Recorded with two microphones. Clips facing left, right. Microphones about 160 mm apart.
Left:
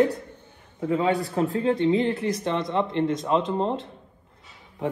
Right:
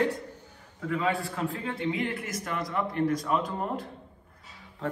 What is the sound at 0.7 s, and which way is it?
Speech, 25° left (ahead or behind).